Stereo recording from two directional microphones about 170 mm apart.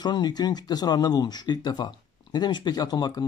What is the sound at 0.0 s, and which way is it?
Speech, 25° left (ahead or behind).